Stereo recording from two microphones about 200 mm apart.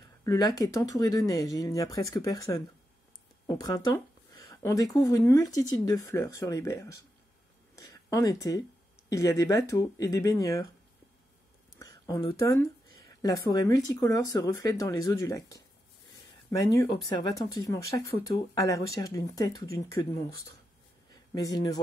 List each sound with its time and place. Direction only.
0.2 s speech: 15° left (ahead or behind)
3.4 s a sound: 20° left (ahead or behind)
4.9 s speech: 15° left (ahead or behind)
11.8 s speech: 15° left (ahead or behind)
21.3 s speech: 20° left (ahead or behind)